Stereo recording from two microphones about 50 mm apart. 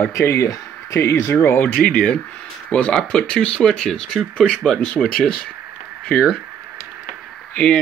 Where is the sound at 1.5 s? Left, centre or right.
Left.